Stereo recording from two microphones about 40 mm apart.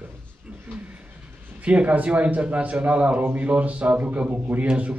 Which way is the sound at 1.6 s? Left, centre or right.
Right.